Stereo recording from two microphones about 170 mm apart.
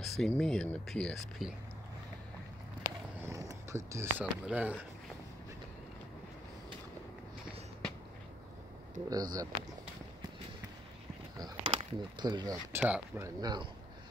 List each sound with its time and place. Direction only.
0.0 s speech: centre (ahead or behind)
3.2 s speech: 15° right (ahead or behind)
9.1 s speech: 25° right (ahead or behind)
11.3 s a sound: 25° right (ahead or behind)
11.8 s speech: 25° right (ahead or behind)
12.7 s speech: 10° right (ahead or behind)
13.2 s speech: 25° right (ahead or behind)